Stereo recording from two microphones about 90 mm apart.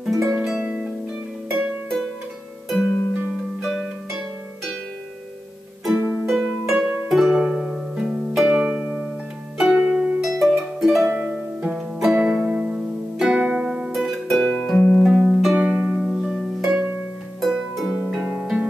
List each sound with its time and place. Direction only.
0.0 s music: centre (ahead or behind)
1.5 s harp: centre (ahead or behind)
6.2 s harp: centre (ahead or behind)
11.1 s music: 5° right (ahead or behind)
13.9 s music: centre (ahead or behind)
15.1 s harp: 5° right (ahead or behind)
18.1 s music: 10° right (ahead or behind)